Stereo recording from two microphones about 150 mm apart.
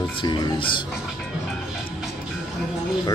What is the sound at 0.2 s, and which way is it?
Speech, 35° left (ahead or behind).